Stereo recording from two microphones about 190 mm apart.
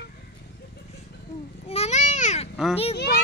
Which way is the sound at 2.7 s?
30° left (ahead or behind).